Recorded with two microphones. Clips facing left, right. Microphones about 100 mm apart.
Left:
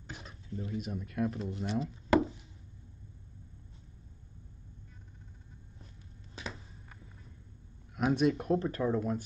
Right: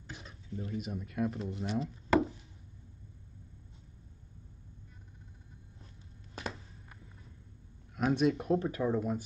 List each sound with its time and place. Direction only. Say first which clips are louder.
0.1 s a sound: left 1 dB; 35° left (ahead or behind)
0.7 s speech: left 1 dB; centre (ahead or behind)
7.9 s speech: left 1 dB; centre (ahead or behind)